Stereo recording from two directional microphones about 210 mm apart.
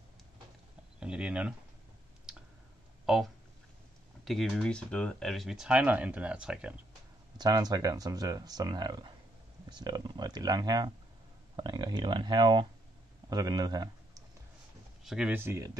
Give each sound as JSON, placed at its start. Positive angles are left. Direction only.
{"t": 0.9, "sound": "speech", "side_deg": -5}
{"t": 2.3, "sound": "clicking", "side_deg": -5}
{"t": 4.2, "sound": "speech", "side_deg": 0}
{"t": 7.3, "sound": "speech", "side_deg": -20}
{"t": 15.0, "sound": "speech", "side_deg": -5}